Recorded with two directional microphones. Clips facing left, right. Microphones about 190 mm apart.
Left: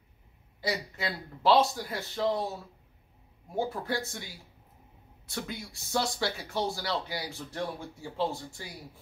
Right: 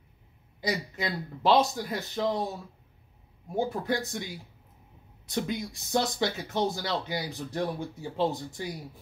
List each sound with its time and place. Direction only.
0.6 s speech: 20° right (ahead or behind)
3.5 s speech: 15° right (ahead or behind)